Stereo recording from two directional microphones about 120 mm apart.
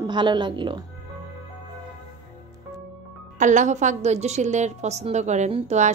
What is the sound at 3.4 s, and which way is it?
A woman's voice, 90° right.